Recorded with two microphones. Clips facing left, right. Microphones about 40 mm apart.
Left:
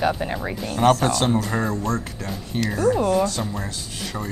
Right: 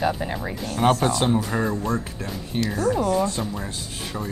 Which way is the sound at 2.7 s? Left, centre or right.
Centre.